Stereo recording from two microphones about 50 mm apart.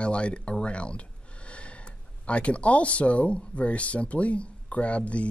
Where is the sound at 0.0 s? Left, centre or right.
Left.